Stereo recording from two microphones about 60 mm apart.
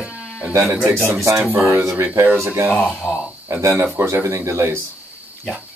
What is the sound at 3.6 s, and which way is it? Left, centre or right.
Speech, right.